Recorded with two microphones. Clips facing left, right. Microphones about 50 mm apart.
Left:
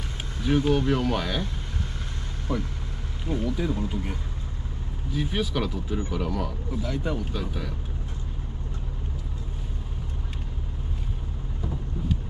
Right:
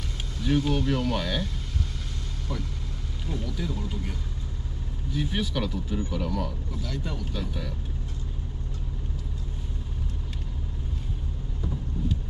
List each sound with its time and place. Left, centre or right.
0.4 s speech: left
2.5 s speech: left
5.1 s speech: centre
12.0 s vehicle: centre